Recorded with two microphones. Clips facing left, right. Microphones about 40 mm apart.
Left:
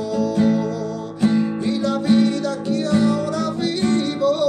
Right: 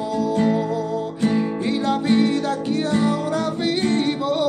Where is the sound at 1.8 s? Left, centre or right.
Right.